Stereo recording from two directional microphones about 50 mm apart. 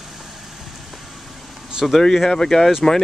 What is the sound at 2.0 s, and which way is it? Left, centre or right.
Speech, centre.